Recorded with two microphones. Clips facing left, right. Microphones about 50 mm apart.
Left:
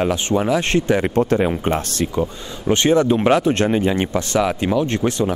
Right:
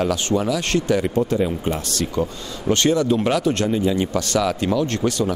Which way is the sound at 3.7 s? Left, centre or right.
Left.